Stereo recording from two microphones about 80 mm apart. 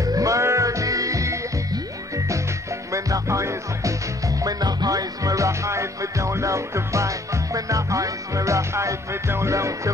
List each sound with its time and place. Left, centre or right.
0.0 s music: right
2.9 s music: right
4.4 s music: right